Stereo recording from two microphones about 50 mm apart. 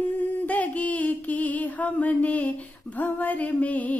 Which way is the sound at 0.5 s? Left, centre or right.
Left.